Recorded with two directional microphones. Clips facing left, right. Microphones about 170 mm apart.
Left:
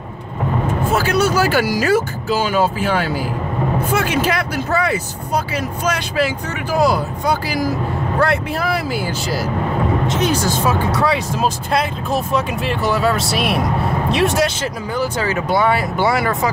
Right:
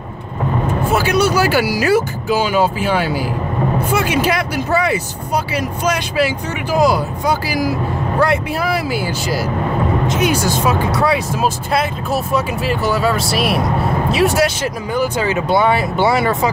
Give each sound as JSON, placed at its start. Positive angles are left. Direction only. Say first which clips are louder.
{"t": 1.3, "sound": "speech", "louder": "right 1 dB", "side_deg": -10}